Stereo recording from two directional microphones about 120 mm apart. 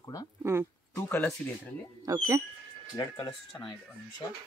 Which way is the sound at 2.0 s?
30° right (ahead or behind).